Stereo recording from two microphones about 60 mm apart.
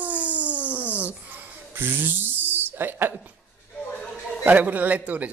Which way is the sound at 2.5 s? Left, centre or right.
Right.